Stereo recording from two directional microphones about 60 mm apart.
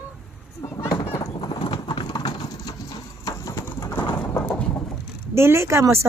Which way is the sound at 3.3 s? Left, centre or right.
Left.